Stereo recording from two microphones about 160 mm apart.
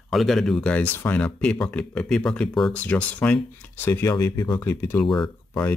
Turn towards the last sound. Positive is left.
turn(degrees=10)  # may be behind; listen again after turning